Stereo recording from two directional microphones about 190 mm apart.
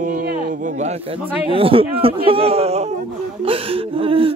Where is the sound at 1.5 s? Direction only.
30° right (ahead or behind).